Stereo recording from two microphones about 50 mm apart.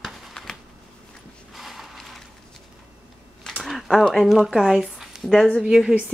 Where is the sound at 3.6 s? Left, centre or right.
Centre.